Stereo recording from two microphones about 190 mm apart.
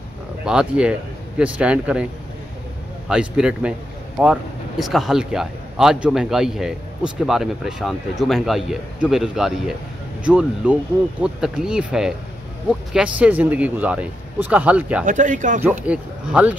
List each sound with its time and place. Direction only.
0.5 s speech: 5° right (ahead or behind)
3.1 s speech: 5° right (ahead or behind)
15.0 s speech: 40° right (ahead or behind)
15.6 s speech: 10° right (ahead or behind)